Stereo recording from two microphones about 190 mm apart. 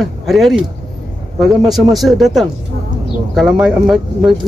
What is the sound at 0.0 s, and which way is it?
Speech, centre (ahead or behind).